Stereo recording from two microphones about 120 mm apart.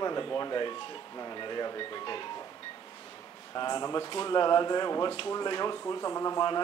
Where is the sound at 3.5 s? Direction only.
35° left (ahead or behind).